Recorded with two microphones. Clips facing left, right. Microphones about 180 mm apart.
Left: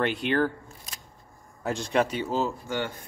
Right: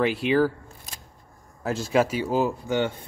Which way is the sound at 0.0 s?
Centre (ahead or behind).